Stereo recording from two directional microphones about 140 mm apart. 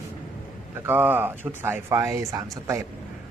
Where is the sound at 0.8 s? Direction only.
15° right (ahead or behind).